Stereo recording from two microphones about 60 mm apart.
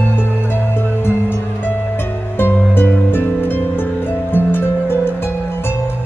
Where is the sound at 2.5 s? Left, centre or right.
Left.